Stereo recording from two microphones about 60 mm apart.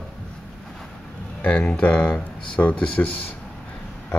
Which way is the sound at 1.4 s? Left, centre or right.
Left.